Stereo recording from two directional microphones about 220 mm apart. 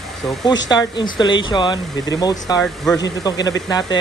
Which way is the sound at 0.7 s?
20° left (ahead or behind).